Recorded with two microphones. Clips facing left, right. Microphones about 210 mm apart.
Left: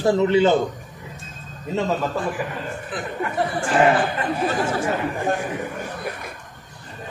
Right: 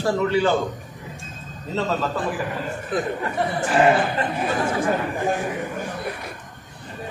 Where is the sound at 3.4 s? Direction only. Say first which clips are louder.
Even; centre (ahead or behind).